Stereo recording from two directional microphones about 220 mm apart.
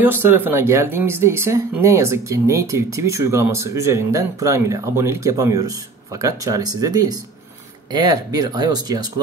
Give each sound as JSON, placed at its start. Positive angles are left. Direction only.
{"t": 0.0, "sound": "speech", "side_deg": -10}